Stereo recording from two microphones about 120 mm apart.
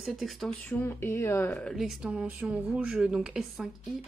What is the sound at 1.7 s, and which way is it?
Speech, 5° right (ahead or behind).